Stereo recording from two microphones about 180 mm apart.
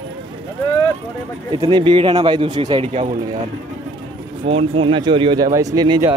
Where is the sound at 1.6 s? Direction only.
25° right (ahead or behind).